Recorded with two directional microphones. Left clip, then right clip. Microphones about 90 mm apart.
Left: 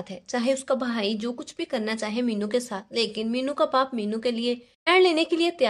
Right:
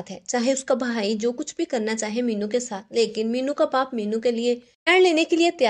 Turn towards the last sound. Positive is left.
turn(degrees=-25)  # may be behind; listen again after turning